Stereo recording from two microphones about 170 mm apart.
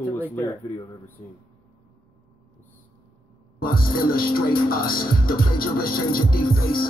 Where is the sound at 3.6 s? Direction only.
60° left (ahead or behind).